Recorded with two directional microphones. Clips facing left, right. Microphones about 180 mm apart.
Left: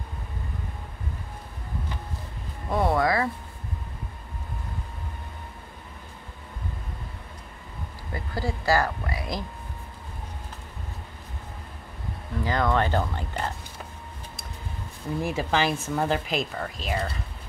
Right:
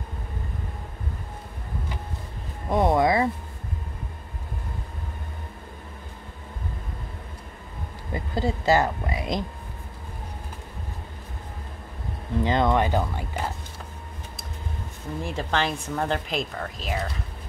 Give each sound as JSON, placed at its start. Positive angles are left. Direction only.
{"t": 2.7, "sound": "speech", "side_deg": -20}
{"t": 8.1, "sound": "speech", "side_deg": -20}
{"t": 12.4, "sound": "speech", "side_deg": -20}
{"t": 15.2, "sound": "speech", "side_deg": 5}